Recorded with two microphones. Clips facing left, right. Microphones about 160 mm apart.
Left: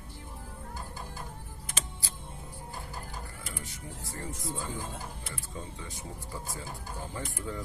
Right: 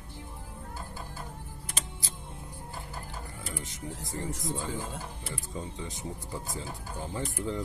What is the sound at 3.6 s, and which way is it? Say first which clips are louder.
Speech: right 3 dB; 20° right (ahead or behind).